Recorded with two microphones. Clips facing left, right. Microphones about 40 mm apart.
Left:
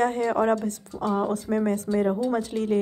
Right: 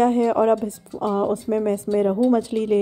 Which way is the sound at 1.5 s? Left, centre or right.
Right.